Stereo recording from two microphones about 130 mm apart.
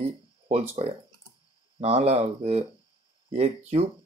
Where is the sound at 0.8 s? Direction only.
50° right (ahead or behind).